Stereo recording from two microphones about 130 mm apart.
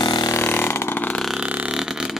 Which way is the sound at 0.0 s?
35° left (ahead or behind).